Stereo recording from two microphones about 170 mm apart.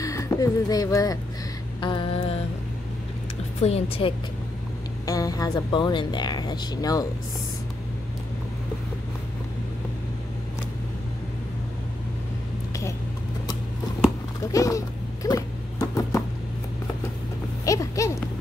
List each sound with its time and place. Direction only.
0.0 s speech: 20° left (ahead or behind)
1.8 s music: 30° left (ahead or behind)
3.6 s a woman's voice: 40° left (ahead or behind)
5.0 s speech: 20° left (ahead or behind)
14.5 s a sound: 20° left (ahead or behind)
15.2 s dog: 20° left (ahead or behind)
17.6 s a sound: 20° left (ahead or behind)